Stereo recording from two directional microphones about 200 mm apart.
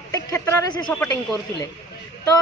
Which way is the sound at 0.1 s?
15° left (ahead or behind).